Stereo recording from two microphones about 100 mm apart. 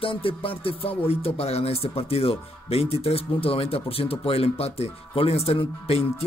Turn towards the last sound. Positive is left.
turn(degrees=80)